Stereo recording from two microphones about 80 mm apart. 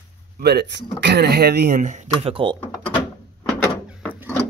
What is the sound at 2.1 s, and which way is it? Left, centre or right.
Speech, right.